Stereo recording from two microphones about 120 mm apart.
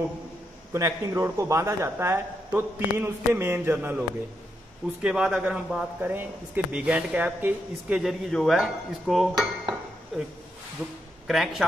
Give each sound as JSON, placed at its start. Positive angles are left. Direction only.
{"t": 0.7, "sound": "a man's voice", "side_deg": -25}
{"t": 5.0, "sound": "a man's voice", "side_deg": -5}
{"t": 10.8, "sound": "a man's voice", "side_deg": -5}